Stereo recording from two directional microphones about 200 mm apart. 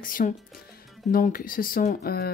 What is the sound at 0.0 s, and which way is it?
Speech, 45° left (ahead or behind).